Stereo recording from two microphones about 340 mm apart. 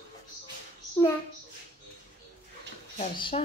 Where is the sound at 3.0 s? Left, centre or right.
Centre.